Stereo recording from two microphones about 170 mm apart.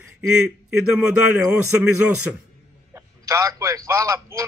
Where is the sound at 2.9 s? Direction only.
15° right (ahead or behind).